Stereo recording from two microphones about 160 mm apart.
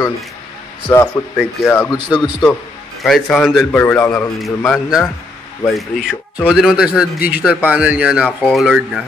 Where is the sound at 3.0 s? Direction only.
Centre (ahead or behind).